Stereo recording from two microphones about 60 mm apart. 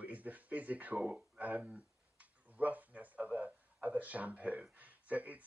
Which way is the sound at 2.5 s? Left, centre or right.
Right.